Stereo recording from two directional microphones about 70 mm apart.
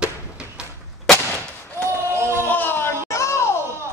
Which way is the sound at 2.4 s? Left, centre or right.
Left.